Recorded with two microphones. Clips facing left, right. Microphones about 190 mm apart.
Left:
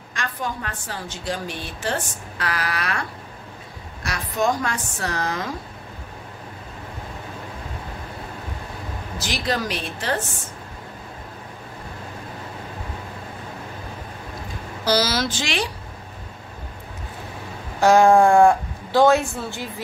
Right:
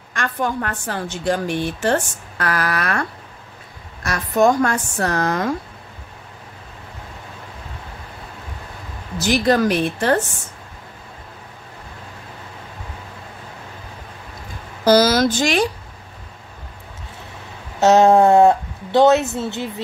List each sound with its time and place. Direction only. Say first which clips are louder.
0.1 s a woman's voice: right 6 dB; 60° right (ahead or behind)
4.0 s a woman's voice: right 7 dB; 50° right (ahead or behind)
9.2 s a woman's voice: right 10 dB; 55° right (ahead or behind)
14.9 s a woman's voice: right 8 dB; 50° right (ahead or behind)
17.7 s speech: right 2 dB; 25° right (ahead or behind)